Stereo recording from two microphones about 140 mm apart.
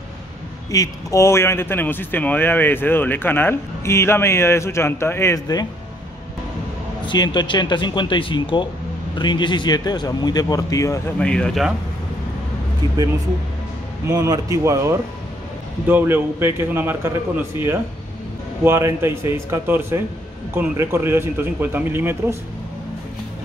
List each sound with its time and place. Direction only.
0.7 s a man's voice: 25° left (ahead or behind)
7.1 s speech: 30° left (ahead or behind)
11.1 s speech: 5° left (ahead or behind)
14.0 s a man's voice: 25° right (ahead or behind)